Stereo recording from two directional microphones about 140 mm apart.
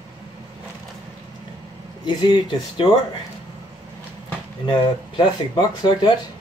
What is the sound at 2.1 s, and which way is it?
Speech, 35° left (ahead or behind).